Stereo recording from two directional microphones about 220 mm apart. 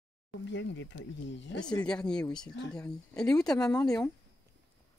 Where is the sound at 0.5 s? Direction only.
55° left (ahead or behind).